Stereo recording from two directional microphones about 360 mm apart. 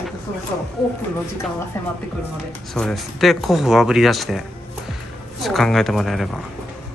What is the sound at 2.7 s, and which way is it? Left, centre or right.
Speech, centre.